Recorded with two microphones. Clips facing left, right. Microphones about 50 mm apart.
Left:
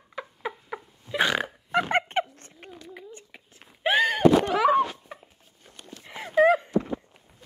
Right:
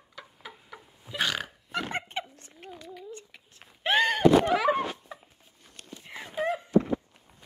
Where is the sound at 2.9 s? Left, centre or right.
Centre.